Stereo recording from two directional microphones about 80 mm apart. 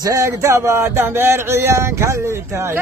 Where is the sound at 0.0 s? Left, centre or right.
Right.